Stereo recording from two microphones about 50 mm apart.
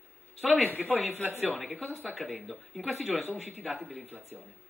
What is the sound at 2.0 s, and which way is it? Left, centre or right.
Speech, centre.